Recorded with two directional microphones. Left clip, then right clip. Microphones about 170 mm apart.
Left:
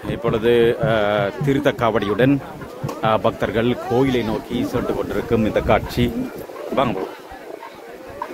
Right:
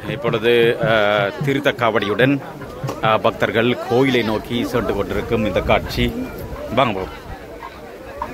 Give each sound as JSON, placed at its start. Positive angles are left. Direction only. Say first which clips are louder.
{"t": 0.1, "sound": "speech", "louder": "right 1 dB", "side_deg": 35}
{"t": 5.3, "sound": "speech", "louder": "even", "side_deg": 50}
{"t": 6.7, "sound": "a man's voice", "louder": "right 3 dB", "side_deg": 30}